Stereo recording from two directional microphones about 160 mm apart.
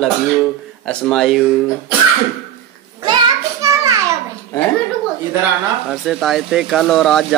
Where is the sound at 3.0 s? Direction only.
20° right (ahead or behind).